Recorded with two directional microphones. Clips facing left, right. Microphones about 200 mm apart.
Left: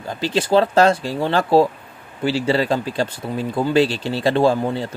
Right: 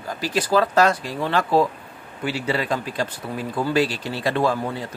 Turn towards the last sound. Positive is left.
turn(degrees=30)  # may be behind; listen again after turning